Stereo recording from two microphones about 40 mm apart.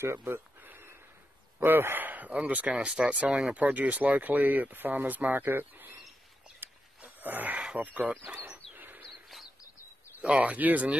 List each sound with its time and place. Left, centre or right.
0.0 s speech: right
0.6 s a sound: right
1.6 s speech: right
2.0 s a sound: right
2.4 s speech: right
6.6 s wild animals: right
7.2 s speech: right
7.5 s speech: right
8.7 s bird: right
10.2 s speech: right